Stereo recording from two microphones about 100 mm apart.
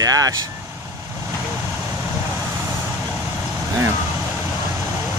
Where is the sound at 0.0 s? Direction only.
40° right (ahead or behind).